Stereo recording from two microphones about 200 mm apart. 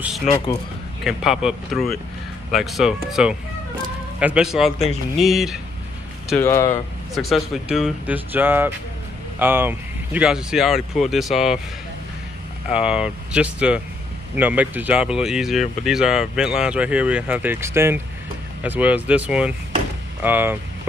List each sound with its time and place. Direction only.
1.0 s speech: centre (ahead or behind)
6.4 s speech: 15° left (ahead or behind)
7.2 s speech: centre (ahead or behind)
12.6 s speech: 5° right (ahead or behind)